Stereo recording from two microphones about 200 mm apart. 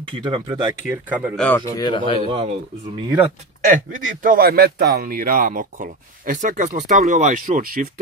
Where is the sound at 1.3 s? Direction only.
5° left (ahead or behind).